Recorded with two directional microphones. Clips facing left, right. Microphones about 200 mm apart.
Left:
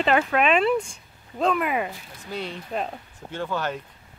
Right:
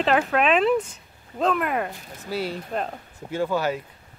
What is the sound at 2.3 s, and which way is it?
Speech, 5° right (ahead or behind).